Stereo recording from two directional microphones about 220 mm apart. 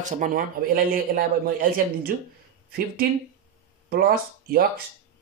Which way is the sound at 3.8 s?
45° right (ahead or behind).